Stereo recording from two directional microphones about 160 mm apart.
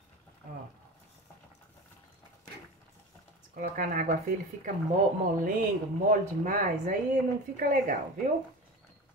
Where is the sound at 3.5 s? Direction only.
55° right (ahead or behind).